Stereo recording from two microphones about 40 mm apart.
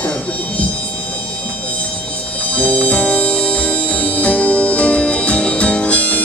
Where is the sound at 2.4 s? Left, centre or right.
Left.